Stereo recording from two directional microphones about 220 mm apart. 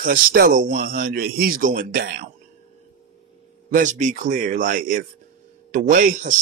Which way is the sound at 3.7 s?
35° right (ahead or behind).